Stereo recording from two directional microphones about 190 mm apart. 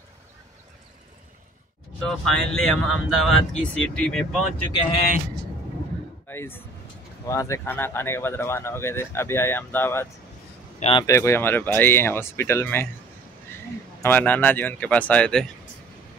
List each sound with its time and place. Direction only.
2.0 s speech: centre (ahead or behind)
6.2 s speech: 10° left (ahead or behind)
10.8 s speech: 30° left (ahead or behind)
11.1 s speech: 15° left (ahead or behind)
14.0 s speech: 10° left (ahead or behind)